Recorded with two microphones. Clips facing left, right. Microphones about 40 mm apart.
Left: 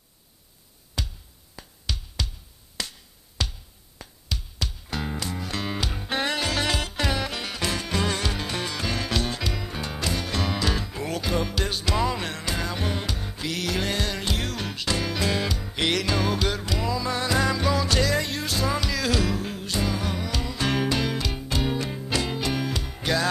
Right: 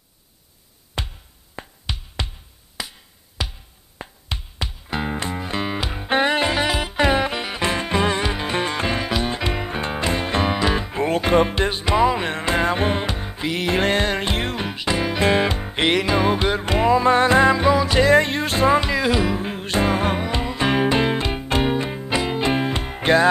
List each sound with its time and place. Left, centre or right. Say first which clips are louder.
0.9 s music: right 4 dB; right
2.8 s music: right 2 dB; centre
4.0 s a sound: right 3 dB; right
4.6 s music: right 6 dB; right
15.2 s music: right 8 dB; right
15.9 s music: right 7 dB; right
18.0 s music: right 9 dB; right
19.6 s music: right 11 dB; right
22.5 s music: right 6 dB; right